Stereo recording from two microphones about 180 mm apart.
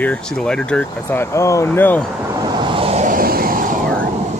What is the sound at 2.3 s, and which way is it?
Vehicle, 20° right (ahead or behind).